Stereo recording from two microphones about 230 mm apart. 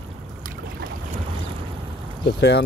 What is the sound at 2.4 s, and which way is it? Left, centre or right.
Speech, left.